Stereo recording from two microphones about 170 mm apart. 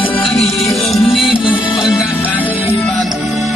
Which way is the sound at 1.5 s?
30° left (ahead or behind).